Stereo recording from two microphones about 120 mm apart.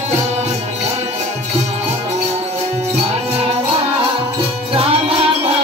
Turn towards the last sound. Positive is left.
turn(degrees=-55)  # may be behind; listen again after turning